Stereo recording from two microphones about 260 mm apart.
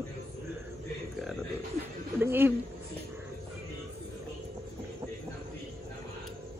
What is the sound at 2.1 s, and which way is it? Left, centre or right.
Speech, centre.